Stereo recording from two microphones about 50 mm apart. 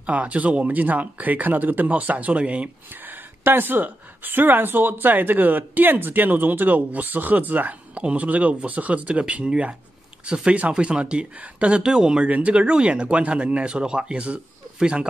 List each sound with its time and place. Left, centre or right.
0.0 s a woman's voice: right
2.9 s a woman's voice: right
7.9 s speech: right
12.3 s speech: right